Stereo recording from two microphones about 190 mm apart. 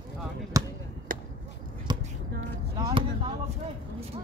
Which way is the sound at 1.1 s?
45° right (ahead or behind).